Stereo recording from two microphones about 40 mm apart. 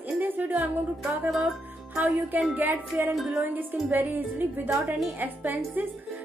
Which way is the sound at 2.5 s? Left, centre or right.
Right.